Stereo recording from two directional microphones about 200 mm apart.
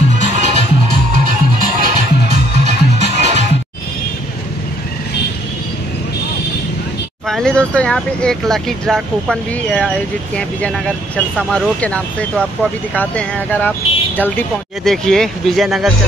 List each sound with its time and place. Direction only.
0.2 s music: 35° right (ahead or behind)
7.2 s speech: 5° left (ahead or behind)